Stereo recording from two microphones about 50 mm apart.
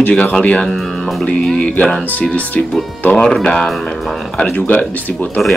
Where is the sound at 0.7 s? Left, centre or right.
Centre.